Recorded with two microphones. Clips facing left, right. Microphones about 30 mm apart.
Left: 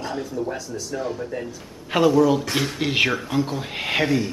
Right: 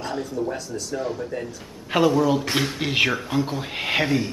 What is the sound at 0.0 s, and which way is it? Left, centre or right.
Speech, centre.